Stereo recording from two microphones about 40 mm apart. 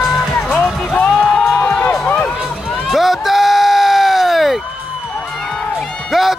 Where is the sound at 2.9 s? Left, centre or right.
Centre.